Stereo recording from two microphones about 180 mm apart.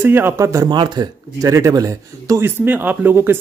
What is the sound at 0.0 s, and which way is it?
Speech, 10° right (ahead or behind).